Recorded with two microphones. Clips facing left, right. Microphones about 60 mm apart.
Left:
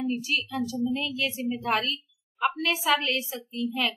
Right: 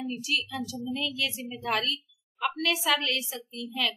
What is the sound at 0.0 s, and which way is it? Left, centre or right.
A woman's voice, left.